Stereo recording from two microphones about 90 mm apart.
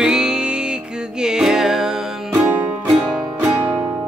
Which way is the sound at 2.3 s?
20° right (ahead or behind).